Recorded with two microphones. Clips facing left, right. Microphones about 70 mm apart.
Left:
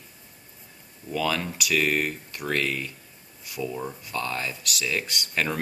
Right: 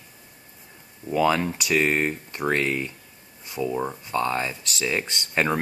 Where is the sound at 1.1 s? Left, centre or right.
Right.